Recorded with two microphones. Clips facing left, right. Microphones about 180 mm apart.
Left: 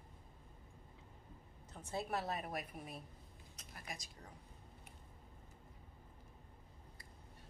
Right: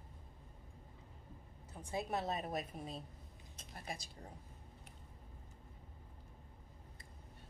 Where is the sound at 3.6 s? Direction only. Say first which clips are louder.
Right 4 dB; 30° right (ahead or behind).